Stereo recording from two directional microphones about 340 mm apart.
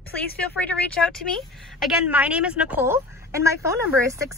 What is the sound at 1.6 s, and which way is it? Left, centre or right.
A woman's voice, centre.